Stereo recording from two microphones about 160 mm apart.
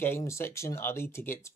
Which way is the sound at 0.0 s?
15° left (ahead or behind).